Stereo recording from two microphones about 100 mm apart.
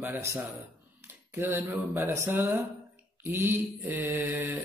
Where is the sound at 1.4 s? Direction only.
25° right (ahead or behind).